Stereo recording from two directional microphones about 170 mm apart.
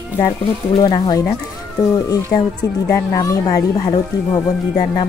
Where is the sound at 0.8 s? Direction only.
25° left (ahead or behind).